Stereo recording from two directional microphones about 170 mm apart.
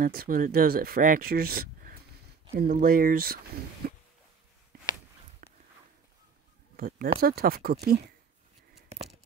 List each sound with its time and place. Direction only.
0.0 s speech: 60° right (ahead or behind)
5.4 s walk: 55° right (ahead or behind)
6.8 s a sound: 60° right (ahead or behind)
7.2 s speech: 65° right (ahead or behind)